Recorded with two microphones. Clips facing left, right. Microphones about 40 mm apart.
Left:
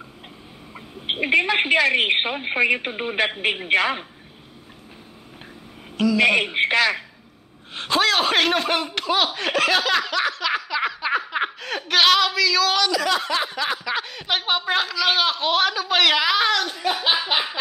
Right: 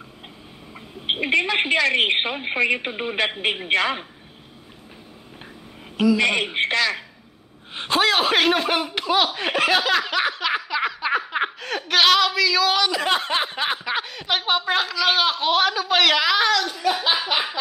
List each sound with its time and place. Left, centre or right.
0.7 s a sound: centre
1.3 s a woman's voice: centre
6.1 s a woman's voice: centre
6.7 s speech: centre
7.7 s a woman's voice: centre
10.0 s snicker: centre
12.9 s snicker: right
14.0 s a woman's voice: centre
16.4 s speech: centre